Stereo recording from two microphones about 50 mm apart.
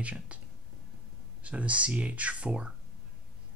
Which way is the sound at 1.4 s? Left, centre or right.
Right.